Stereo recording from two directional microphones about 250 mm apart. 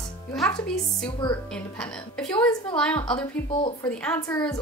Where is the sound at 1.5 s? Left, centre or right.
Centre.